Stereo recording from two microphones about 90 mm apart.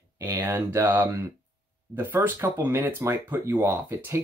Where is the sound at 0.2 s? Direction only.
30° right (ahead or behind).